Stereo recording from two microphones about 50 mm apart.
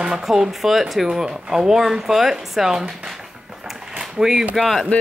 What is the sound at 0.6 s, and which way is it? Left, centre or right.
Speech, centre.